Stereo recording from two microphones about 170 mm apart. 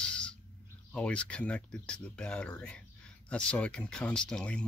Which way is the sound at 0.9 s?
5° left (ahead or behind).